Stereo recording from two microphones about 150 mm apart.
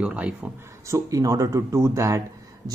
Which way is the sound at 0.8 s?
20° right (ahead or behind).